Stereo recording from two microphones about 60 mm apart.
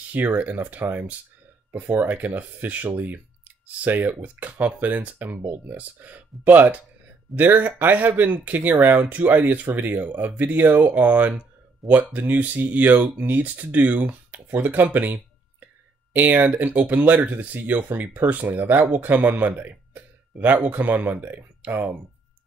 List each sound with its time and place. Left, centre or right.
0.1 s speech: right